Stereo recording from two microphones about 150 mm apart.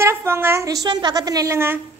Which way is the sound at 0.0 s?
15° right (ahead or behind).